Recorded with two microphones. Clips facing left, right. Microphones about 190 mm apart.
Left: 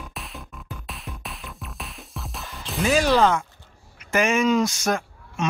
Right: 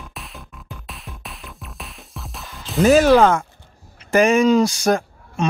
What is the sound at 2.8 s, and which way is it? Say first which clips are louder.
Speech: right 7 dB; 50° right (ahead or behind).